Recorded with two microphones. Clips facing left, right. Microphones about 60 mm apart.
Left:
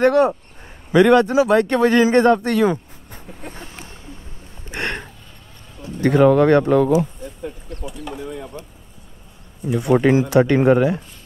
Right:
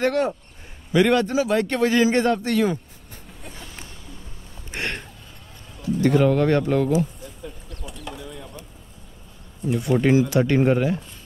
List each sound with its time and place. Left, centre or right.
0.0 s speech: left
2.0 s speech: left
3.3 s vehicle: left
3.7 s a sound: left
4.7 s a sound: left
5.9 s speech: left
7.8 s pigeon: centre
9.7 s speech: left